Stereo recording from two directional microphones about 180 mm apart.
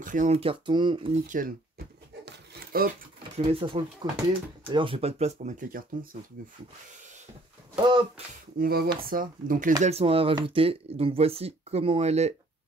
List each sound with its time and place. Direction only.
0.0 s speech: 45° right (ahead or behind)
2.2 s a sound: 60° right (ahead or behind)
3.3 s speech: 30° right (ahead or behind); by 5.9 s 50° right (ahead or behind)
7.7 s a sound: 25° right (ahead or behind)
8.5 s speech: 55° right (ahead or behind)
9.8 s speech: 35° right (ahead or behind)